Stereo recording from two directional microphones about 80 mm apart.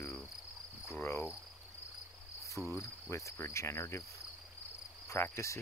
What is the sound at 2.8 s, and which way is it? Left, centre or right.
Cricket, left.